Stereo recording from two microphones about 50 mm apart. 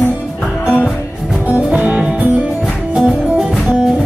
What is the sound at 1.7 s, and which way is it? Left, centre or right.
Music, centre.